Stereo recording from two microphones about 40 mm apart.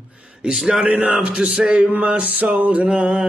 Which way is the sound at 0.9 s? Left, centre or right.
Right.